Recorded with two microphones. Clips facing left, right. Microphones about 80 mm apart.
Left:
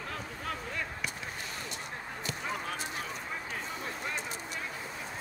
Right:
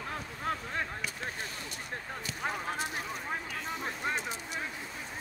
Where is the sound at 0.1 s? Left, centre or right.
Right.